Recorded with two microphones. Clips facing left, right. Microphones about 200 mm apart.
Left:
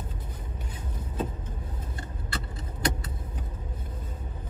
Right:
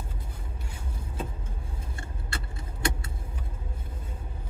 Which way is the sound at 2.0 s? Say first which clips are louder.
Left 2 dB; 25° right (ahead or behind).